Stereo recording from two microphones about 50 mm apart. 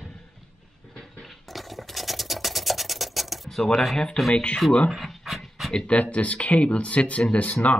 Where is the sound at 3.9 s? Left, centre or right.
Centre.